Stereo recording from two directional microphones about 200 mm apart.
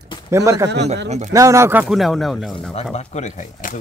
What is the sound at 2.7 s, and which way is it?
Speech, 35° left (ahead or behind).